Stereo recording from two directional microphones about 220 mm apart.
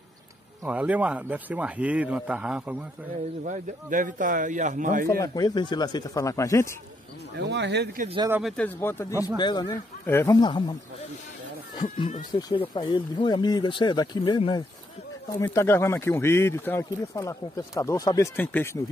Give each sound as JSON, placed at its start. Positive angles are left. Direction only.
{"t": 0.7, "sound": "a man's voice", "side_deg": -5}
{"t": 3.4, "sound": "a man's voice", "side_deg": -35}
{"t": 5.2, "sound": "speech", "side_deg": 15}
{"t": 7.3, "sound": "speech", "side_deg": -50}
{"t": 8.4, "sound": "speech", "side_deg": 0}
{"t": 12.0, "sound": "speech", "side_deg": 20}
{"t": 15.3, "sound": "speech", "side_deg": 10}